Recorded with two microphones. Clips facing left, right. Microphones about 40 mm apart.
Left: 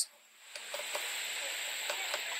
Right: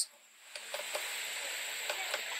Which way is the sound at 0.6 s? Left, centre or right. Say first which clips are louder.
Even; centre.